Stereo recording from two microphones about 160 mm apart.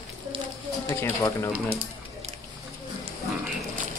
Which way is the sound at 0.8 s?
20° left (ahead or behind).